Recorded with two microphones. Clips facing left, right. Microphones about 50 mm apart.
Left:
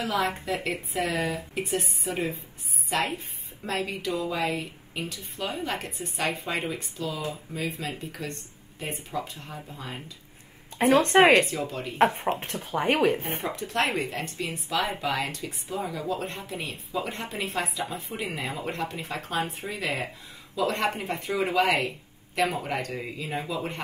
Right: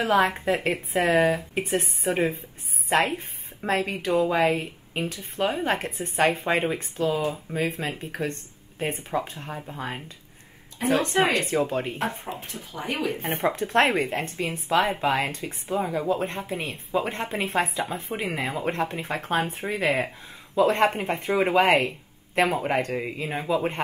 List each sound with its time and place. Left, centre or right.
0.0 s speech: right
10.8 s speech: left
11.4 s speech: right
12.3 s speech: left
13.2 s speech: right